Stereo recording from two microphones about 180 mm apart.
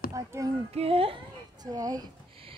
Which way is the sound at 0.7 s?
30° right (ahead or behind).